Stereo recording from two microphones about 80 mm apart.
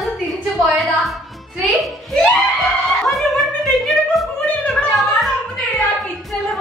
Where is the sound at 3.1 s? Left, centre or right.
Centre.